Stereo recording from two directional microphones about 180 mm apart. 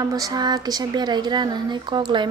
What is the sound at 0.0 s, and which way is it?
A woman's voice, 20° right (ahead or behind).